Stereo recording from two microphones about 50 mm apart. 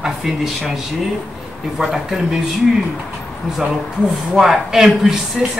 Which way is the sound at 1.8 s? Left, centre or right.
Centre.